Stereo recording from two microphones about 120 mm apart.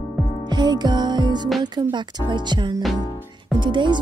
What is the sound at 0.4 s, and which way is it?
Music, 40° right (ahead or behind).